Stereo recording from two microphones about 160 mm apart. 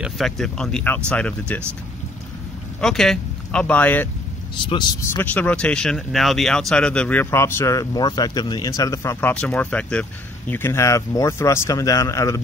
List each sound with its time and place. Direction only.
0.0 s speech: centre (ahead or behind)
2.8 s speech: 5° left (ahead or behind)
5.1 s speech: 10° left (ahead or behind)